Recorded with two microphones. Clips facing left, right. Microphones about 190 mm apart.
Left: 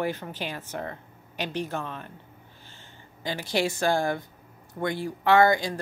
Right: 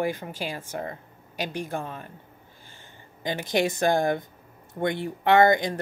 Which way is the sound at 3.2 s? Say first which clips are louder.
Right 2 dB; 20° right (ahead or behind).